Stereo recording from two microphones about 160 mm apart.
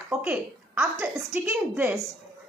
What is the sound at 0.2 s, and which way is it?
A woman's voice, 15° right (ahead or behind).